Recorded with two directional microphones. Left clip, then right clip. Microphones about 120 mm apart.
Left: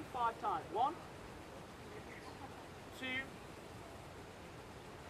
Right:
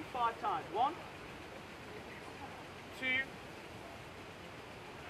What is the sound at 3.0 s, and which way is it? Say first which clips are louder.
Speech: right 7 dB; centre (ahead or behind).